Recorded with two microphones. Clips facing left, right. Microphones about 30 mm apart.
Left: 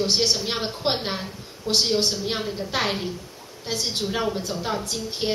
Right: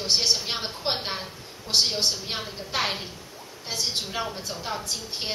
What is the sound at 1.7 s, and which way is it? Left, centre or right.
Speech, left.